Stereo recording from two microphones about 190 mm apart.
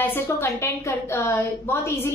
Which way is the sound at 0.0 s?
10° left (ahead or behind).